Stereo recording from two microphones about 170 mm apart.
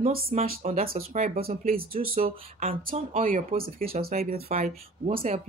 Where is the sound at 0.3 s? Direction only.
40° right (ahead or behind).